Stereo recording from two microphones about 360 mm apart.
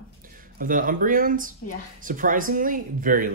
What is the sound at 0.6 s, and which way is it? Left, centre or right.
Speech, right.